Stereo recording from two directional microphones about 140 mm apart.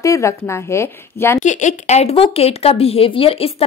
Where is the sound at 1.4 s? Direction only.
60° left (ahead or behind).